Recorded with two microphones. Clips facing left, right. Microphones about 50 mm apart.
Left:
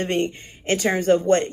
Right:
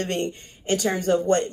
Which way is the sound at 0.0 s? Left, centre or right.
Left.